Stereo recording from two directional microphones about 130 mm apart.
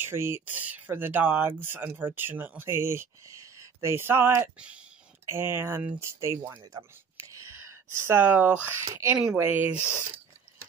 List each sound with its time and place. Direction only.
0.0 s speech: 20° right (ahead or behind)
6.8 s whispering: 25° right (ahead or behind)
8.6 s speech: 20° right (ahead or behind)
9.2 s speech: 5° right (ahead or behind)